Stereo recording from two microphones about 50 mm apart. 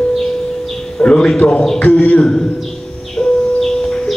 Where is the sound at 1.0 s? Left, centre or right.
Centre.